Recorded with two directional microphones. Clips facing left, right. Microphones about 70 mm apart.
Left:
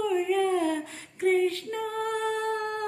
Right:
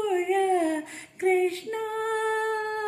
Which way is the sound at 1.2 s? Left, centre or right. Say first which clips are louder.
Right 1 dB; right.